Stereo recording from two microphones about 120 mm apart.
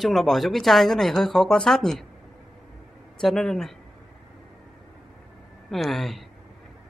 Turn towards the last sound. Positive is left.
turn(degrees=0)  # may be behind; listen again after turning